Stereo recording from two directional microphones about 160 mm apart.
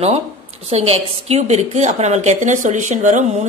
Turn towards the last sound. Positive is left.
turn(degrees=-50)  # may be behind; listen again after turning